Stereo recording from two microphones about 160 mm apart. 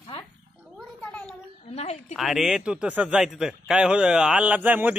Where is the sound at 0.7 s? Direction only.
5° left (ahead or behind).